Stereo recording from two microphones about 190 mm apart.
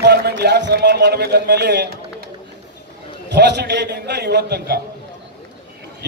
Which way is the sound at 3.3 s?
65° right (ahead or behind).